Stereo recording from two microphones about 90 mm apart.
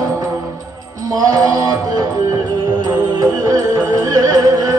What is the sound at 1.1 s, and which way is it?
Music, 40° right (ahead or behind).